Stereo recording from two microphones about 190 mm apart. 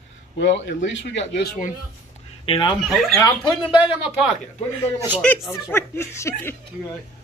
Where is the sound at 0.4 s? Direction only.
70° left (ahead or behind).